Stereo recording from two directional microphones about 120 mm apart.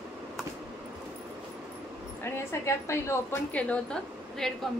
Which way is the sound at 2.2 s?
20° left (ahead or behind).